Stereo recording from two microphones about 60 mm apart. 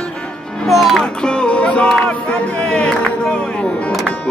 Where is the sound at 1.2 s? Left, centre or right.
Centre.